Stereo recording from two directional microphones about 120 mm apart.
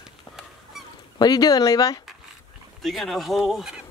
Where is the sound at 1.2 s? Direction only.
35° left (ahead or behind).